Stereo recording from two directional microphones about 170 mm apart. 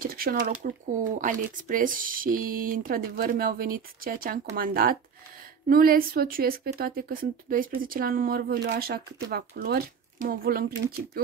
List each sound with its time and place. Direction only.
0.0 s speech: 60° right (ahead or behind)